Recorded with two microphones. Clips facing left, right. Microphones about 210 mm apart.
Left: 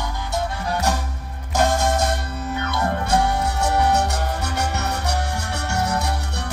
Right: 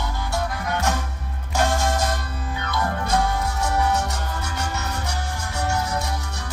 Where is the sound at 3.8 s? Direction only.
65° left (ahead or behind).